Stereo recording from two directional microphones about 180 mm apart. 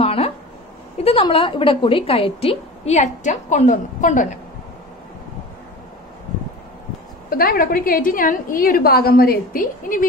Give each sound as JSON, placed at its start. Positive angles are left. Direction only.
{"t": 0.0, "sound": "a sound", "side_deg": 35}
{"t": 1.0, "sound": "a woman's voice", "side_deg": 30}
{"t": 7.2, "sound": "a woman's voice", "side_deg": 55}